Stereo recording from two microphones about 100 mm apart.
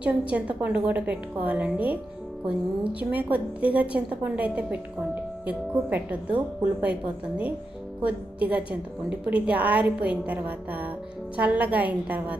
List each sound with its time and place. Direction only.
0.0 s a woman's voice: 10° right (ahead or behind)